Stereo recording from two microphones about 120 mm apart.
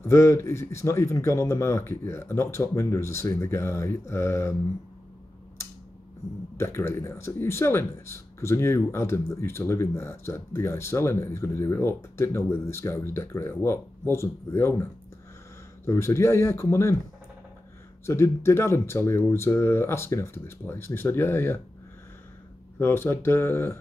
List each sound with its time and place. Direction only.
0.0 s speech: 25° left (ahead or behind)
6.5 s speech: 20° left (ahead or behind)
18.0 s speech: 20° left (ahead or behind)
22.8 s speech: 20° left (ahead or behind)